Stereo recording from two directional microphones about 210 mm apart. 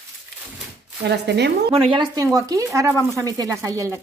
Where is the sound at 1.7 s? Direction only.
25° right (ahead or behind).